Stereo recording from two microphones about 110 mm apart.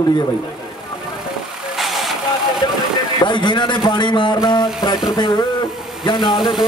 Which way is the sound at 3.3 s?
45° left (ahead or behind).